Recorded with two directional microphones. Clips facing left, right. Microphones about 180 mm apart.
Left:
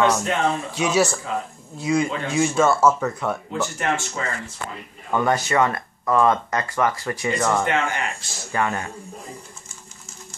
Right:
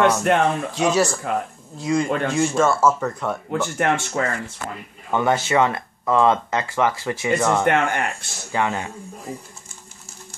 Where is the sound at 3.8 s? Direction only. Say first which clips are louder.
Right 4 dB; 60° right (ahead or behind).